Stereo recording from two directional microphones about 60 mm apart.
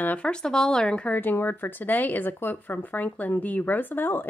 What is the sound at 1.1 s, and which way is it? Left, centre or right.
Speech, left.